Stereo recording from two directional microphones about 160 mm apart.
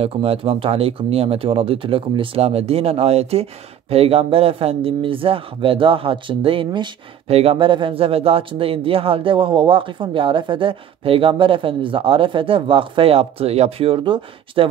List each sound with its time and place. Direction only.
0.0 s speech: 35° right (ahead or behind)